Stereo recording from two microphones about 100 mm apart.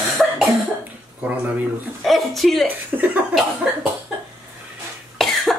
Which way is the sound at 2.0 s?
Centre (ahead or behind).